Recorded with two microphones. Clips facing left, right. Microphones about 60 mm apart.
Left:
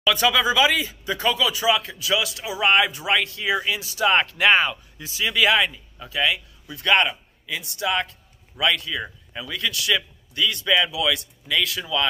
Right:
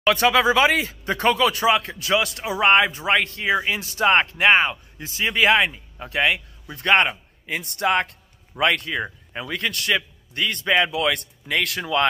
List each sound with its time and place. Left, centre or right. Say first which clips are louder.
0.0 s speech: right 3 dB; right
6.0 s a man's voice: right 2 dB; right